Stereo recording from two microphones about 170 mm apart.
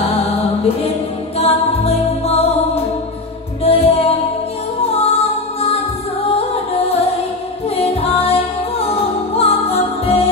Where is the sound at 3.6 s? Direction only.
35° left (ahead or behind).